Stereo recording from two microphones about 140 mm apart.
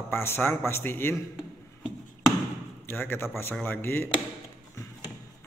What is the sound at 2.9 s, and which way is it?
A man's voice, 15° left (ahead or behind).